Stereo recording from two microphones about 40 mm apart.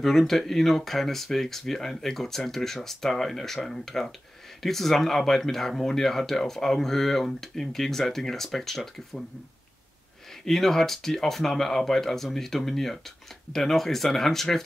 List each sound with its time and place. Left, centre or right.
0.0 s speech: centre
10.4 s speech: centre